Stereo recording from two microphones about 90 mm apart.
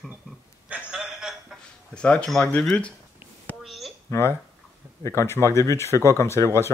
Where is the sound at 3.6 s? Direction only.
Centre (ahead or behind).